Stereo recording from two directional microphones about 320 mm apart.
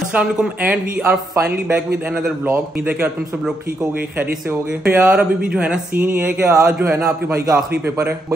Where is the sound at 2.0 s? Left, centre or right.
Centre.